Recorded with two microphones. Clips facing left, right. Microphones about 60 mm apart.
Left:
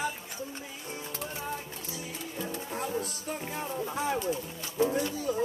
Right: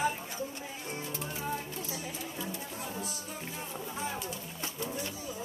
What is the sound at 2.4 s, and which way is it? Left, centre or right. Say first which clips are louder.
Music: left 4 dB; left.